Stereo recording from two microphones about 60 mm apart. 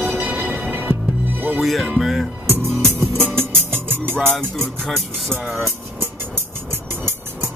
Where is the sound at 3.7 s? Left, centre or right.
Right.